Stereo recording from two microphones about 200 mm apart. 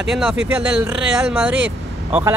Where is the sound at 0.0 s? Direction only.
5° right (ahead or behind).